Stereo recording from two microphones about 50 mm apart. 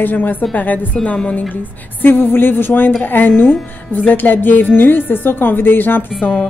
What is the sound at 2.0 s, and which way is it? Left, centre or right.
A woman's voice, left.